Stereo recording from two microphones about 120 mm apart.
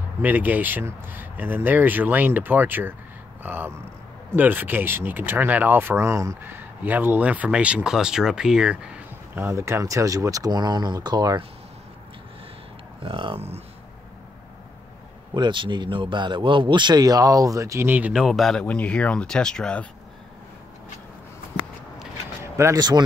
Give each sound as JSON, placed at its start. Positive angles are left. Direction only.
{"t": 0.2, "sound": "speech", "side_deg": -15}
{"t": 13.0, "sound": "speech", "side_deg": -50}
{"t": 15.3, "sound": "a man's voice", "side_deg": -40}
{"t": 18.2, "sound": "speech", "side_deg": 0}
{"t": 22.4, "sound": "a sound", "side_deg": -25}
{"t": 22.8, "sound": "a man's voice", "side_deg": -35}